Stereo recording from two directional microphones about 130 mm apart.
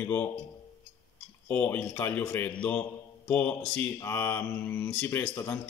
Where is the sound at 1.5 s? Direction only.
10° left (ahead or behind).